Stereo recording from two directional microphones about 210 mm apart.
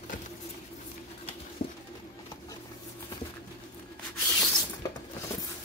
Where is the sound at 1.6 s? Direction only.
35° left (ahead or behind).